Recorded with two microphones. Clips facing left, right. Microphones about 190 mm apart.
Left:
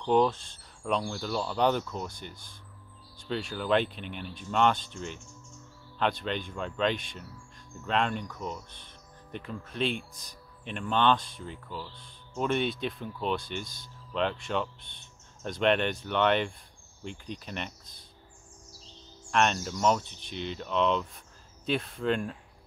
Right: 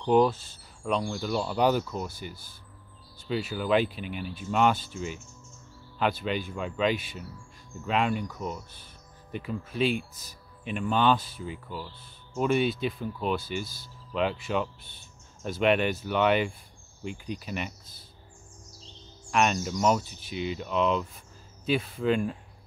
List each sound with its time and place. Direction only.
0.0 s speech: 5° right (ahead or behind)
19.3 s speech: 5° right (ahead or behind)